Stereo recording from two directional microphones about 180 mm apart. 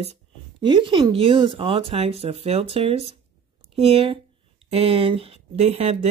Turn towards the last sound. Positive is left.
turn(degrees=-35)  # may be behind; listen again after turning